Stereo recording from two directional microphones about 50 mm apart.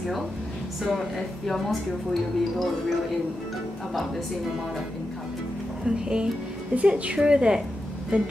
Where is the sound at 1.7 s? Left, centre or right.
Centre.